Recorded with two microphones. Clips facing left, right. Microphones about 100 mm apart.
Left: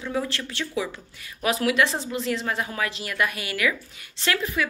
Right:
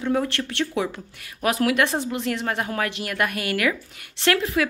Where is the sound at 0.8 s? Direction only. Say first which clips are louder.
Right 3 dB; 60° right (ahead or behind).